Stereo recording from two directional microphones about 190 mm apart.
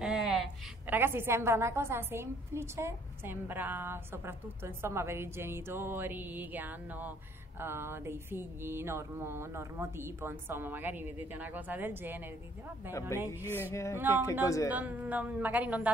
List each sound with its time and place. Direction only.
0.0 s a woman's voice: 5° right (ahead or behind)
13.3 s music: 15° left (ahead or behind)
14.7 s a woman's voice: 10° right (ahead or behind)